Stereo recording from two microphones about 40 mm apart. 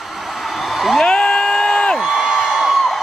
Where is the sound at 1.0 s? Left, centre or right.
Centre.